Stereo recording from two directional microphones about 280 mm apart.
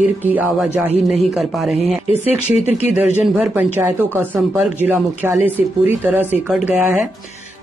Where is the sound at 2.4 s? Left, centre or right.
Left.